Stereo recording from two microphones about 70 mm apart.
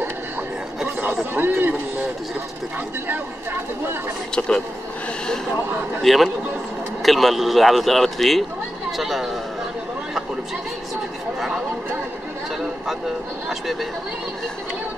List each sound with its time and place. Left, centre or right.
1.3 s a man's voice: right
6.0 s speech: centre
11.3 s speech: centre
13.5 s speech: centre